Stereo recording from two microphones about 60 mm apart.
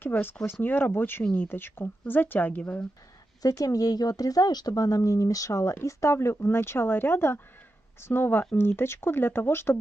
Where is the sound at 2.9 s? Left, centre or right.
Left.